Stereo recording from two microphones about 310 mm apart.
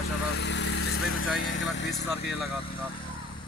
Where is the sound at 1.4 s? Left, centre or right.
Left.